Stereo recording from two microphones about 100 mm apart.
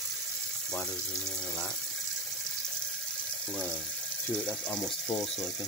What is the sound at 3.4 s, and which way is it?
Speech, 10° left (ahead or behind).